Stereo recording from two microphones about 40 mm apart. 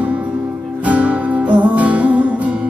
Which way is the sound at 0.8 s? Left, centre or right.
Right.